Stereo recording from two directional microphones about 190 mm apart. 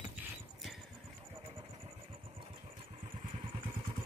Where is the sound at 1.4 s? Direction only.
25° right (ahead or behind).